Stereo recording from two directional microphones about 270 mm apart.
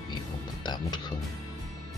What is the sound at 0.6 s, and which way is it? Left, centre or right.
Music, centre.